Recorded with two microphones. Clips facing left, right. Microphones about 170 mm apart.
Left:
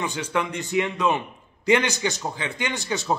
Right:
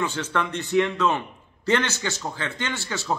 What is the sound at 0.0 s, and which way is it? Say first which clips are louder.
A man's voice: even; 15° left (ahead or behind).